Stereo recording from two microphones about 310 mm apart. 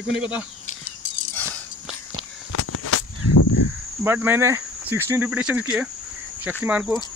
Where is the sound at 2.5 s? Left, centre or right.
Left.